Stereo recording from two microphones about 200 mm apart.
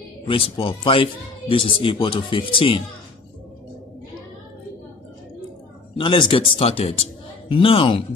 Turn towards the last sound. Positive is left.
turn(degrees=25)  # may be behind; listen again after turning